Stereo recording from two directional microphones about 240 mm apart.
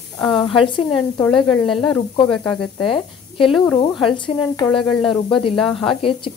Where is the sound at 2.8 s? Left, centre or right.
Left.